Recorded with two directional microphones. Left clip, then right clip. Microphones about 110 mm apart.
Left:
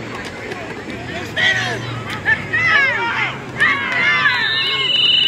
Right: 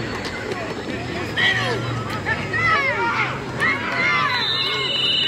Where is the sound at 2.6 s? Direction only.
20° left (ahead or behind).